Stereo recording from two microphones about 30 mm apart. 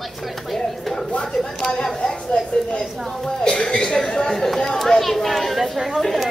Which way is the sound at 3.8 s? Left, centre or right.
Left.